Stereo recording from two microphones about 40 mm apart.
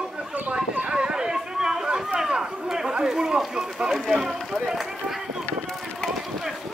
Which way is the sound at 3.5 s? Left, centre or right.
Right.